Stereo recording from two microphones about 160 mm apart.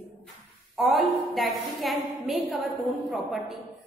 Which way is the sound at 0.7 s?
Centre (ahead or behind).